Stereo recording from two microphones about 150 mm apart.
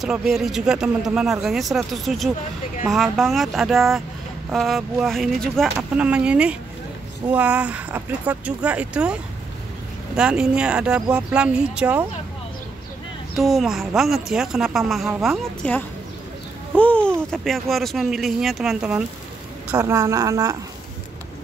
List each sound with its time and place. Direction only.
0.0 s speech: 5° right (ahead or behind)
13.4 s speech: centre (ahead or behind)
16.7 s babbling: 10° left (ahead or behind)
17.3 s speech: centre (ahead or behind)
19.7 s a woman's voice: 20° right (ahead or behind)